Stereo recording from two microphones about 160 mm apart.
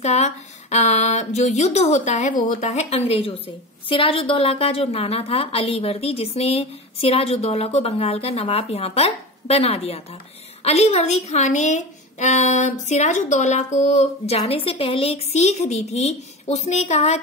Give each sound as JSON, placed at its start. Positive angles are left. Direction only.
{"t": 0.0, "sound": "a woman's voice", "side_deg": 45}